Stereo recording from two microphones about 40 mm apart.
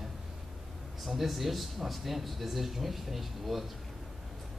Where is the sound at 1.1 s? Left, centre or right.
Centre.